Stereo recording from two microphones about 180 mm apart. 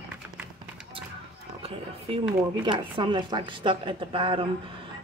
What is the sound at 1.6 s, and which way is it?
Speech, 35° right (ahead or behind).